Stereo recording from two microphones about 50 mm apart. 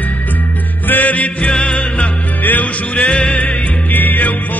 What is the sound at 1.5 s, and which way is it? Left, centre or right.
Music, centre.